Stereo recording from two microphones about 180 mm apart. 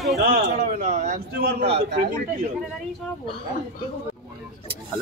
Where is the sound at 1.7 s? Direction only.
70° right (ahead or behind).